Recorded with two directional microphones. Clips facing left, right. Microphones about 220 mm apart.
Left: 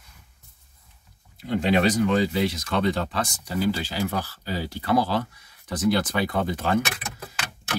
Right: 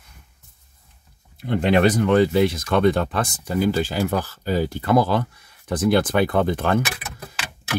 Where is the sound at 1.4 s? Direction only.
60° right (ahead or behind).